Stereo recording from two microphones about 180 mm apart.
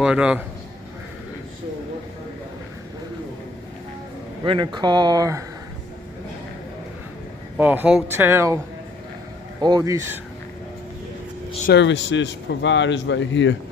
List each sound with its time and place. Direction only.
0.0 s a man's voice: 5° right (ahead or behind)
4.5 s speech: 25° right (ahead or behind)
7.5 s speech: 10° right (ahead or behind)
9.6 s speech: 20° right (ahead or behind)
11.7 s speech: 85° left